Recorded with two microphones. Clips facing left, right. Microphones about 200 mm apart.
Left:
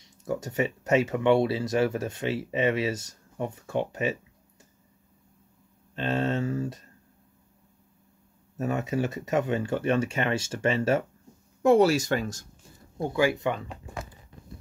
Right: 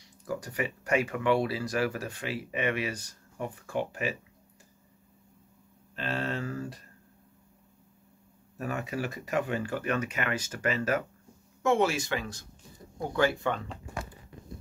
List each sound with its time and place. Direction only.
0.0 s speech: 25° left (ahead or behind)
5.9 s speech: 25° left (ahead or behind)
8.5 s speech: 25° left (ahead or behind); by 12.4 s 45° left (ahead or behind)
13.1 s speech: 15° left (ahead or behind)